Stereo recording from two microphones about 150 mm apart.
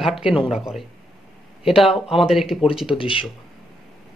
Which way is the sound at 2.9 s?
35° left (ahead or behind).